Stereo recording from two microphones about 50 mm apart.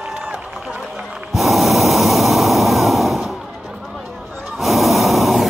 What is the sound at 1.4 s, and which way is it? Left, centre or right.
Breathing, centre.